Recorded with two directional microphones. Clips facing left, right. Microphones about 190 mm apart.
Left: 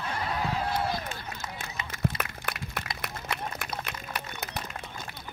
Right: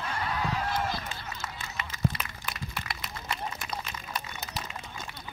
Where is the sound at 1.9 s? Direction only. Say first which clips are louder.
Even; 55° left (ahead or behind).